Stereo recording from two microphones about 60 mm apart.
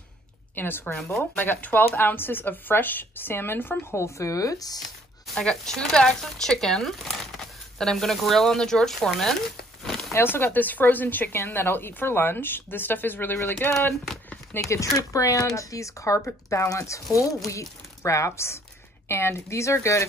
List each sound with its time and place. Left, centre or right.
0.6 s a woman's voice: left
4.0 s speech: left
5.3 s speech: centre
9.8 s a sound: centre
10.2 s a woman's voice: left
14.6 s speech: left